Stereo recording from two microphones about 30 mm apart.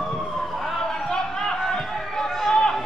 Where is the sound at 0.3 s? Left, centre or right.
Centre.